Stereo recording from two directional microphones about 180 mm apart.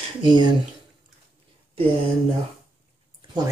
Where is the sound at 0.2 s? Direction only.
25° right (ahead or behind).